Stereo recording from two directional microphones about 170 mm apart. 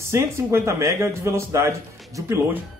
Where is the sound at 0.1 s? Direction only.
15° right (ahead or behind).